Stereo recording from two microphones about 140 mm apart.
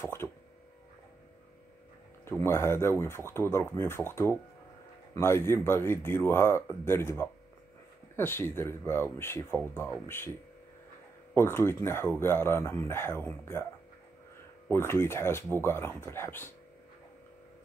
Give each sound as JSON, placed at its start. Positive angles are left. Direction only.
{"t": 0.0, "sound": "speech", "side_deg": 15}
{"t": 2.2, "sound": "speech", "side_deg": 15}
{"t": 11.3, "sound": "speech", "side_deg": 15}
{"t": 14.7, "sound": "speech", "side_deg": 15}